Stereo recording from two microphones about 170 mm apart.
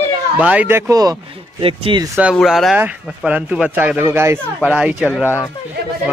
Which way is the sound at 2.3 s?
Centre (ahead or behind).